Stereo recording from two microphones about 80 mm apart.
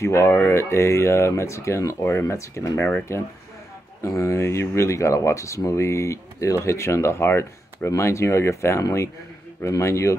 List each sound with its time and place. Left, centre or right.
0.0 s speech: left